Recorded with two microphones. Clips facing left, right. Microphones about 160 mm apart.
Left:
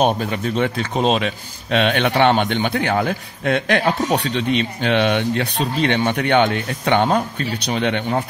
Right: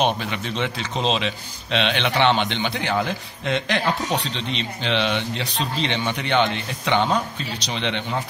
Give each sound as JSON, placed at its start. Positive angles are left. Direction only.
{"t": 0.0, "sound": "a man's voice", "side_deg": 45}